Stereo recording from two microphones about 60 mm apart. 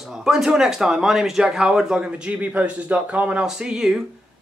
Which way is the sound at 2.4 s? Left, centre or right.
Right.